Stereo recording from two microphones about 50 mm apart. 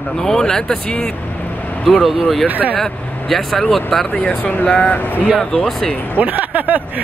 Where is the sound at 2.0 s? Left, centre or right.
Centre.